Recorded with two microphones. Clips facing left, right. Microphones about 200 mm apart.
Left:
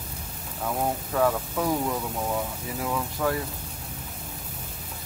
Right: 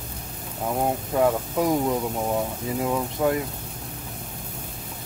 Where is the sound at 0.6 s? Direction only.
20° right (ahead or behind).